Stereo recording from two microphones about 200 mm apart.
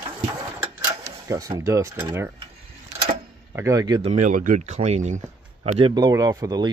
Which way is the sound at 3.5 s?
15° right (ahead or behind).